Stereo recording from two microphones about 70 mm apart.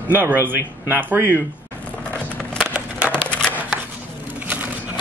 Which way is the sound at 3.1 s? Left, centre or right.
Centre.